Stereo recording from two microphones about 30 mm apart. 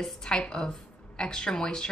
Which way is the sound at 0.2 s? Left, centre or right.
Left.